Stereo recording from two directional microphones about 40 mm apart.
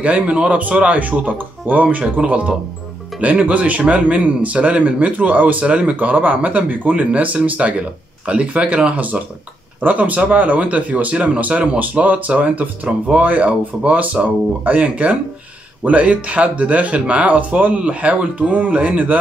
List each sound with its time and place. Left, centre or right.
0.0 s speech: right
9.8 s speech: right